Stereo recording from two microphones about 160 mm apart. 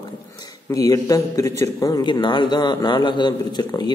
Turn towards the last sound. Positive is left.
turn(degrees=30)  # may be behind; listen again after turning